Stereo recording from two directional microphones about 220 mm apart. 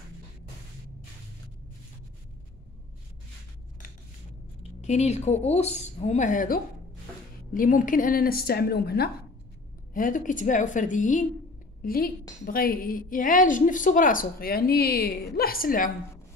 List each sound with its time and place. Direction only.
4.8 s a woman's voice: 30° left (ahead or behind)